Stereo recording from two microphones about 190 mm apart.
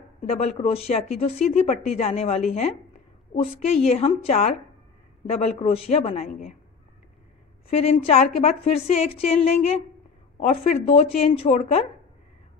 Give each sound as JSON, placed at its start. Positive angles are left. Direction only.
{"t": 0.3, "sound": "a woman's voice", "side_deg": 30}
{"t": 7.7, "sound": "a woman's voice", "side_deg": 30}